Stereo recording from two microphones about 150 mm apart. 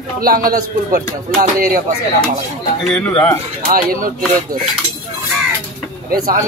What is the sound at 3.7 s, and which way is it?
Speech, 75° right (ahead or behind).